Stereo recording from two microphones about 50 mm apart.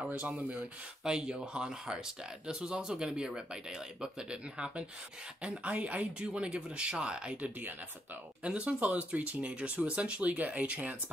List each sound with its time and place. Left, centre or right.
0.1 s speech: right
1.0 s speech: centre